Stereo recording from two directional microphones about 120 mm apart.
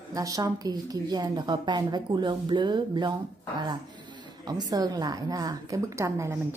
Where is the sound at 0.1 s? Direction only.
30° right (ahead or behind).